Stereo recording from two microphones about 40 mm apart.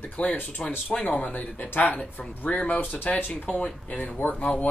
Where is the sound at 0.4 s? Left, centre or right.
Left.